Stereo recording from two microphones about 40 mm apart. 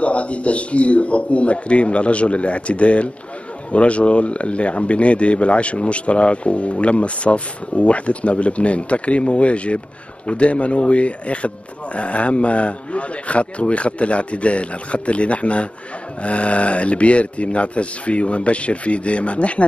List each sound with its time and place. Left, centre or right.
0.0 s speech: left